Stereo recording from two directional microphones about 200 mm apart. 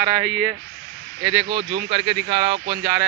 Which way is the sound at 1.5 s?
25° right (ahead or behind).